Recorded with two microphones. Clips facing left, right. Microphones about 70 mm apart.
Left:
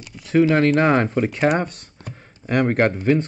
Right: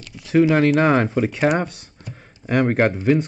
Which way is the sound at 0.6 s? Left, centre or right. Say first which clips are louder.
Even; centre.